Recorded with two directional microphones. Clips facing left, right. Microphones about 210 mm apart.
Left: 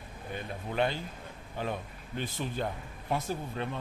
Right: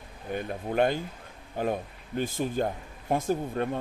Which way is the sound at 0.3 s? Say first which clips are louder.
Right 7 dB; 50° right (ahead or behind).